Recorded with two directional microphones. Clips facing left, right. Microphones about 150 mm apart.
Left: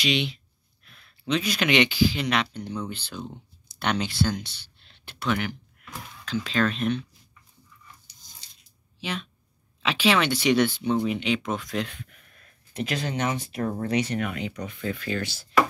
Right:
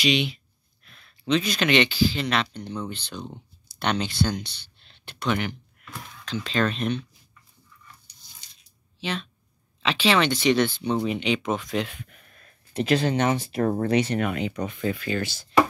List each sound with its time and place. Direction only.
0.0 s speech: 5° right (ahead or behind)
9.0 s speech: 10° left (ahead or behind)
12.7 s speech: 30° right (ahead or behind)
13.9 s speech: 30° right (ahead or behind)
15.0 s speech: 5° right (ahead or behind)